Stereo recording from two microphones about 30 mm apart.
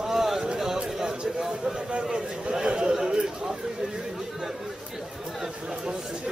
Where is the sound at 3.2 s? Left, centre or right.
Right.